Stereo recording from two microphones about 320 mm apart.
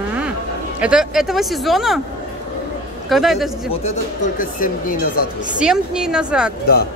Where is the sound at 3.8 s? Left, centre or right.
Left.